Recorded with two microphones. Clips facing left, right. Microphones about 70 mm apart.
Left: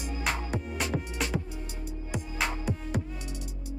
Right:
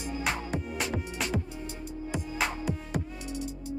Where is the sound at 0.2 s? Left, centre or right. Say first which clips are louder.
Left 1 dB; centre.